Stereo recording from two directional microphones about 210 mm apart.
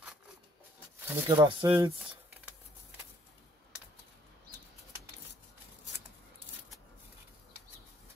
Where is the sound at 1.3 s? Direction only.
20° right (ahead or behind).